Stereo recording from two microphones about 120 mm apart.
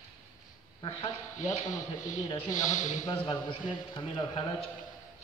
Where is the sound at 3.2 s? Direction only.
45° left (ahead or behind).